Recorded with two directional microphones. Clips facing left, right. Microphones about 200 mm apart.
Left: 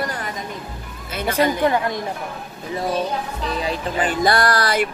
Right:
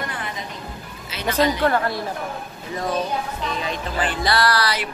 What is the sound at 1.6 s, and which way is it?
Speech, 15° left (ahead or behind).